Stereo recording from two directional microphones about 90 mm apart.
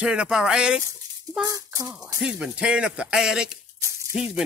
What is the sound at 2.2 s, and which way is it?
Speech, 10° right (ahead or behind).